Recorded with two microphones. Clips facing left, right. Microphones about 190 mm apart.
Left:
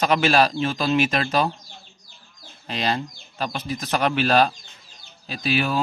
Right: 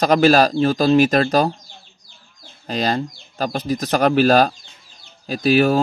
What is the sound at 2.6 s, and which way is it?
Speech, 40° right (ahead or behind).